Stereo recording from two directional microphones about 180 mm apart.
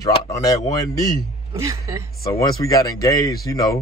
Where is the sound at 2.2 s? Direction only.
20° left (ahead or behind).